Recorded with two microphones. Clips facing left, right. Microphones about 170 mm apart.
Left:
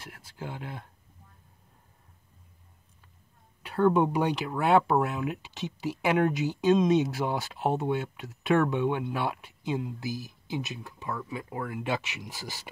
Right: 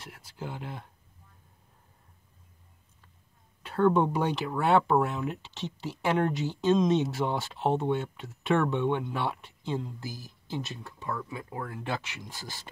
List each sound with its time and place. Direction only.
0.0 s speech: centre (ahead or behind)
3.6 s speech: 5° left (ahead or behind)
11.8 s speech: 15° left (ahead or behind)